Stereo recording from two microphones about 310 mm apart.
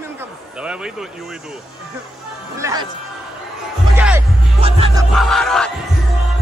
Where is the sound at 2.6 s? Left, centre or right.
Centre.